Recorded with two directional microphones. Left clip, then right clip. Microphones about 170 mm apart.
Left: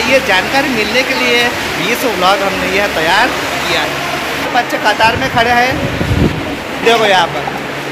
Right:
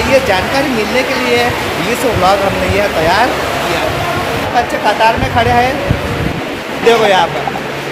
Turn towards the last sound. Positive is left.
turn(degrees=10)  # may be behind; listen again after turning